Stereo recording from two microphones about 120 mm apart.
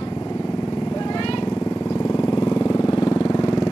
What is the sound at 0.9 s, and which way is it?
Vehicle, 35° left (ahead or behind).